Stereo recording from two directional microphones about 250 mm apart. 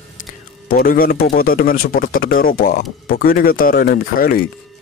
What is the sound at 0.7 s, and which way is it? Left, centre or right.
Speech, left.